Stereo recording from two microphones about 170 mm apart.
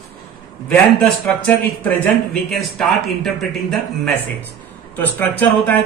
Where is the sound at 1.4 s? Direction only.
10° left (ahead or behind).